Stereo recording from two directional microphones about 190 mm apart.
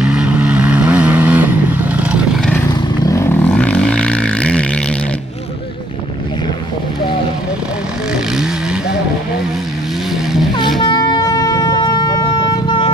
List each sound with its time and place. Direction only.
0.0 s vehicle: 5° right (ahead or behind)
3.0 s a sound: 15° left (ahead or behind)
10.8 s wind instrument: 25° left (ahead or behind)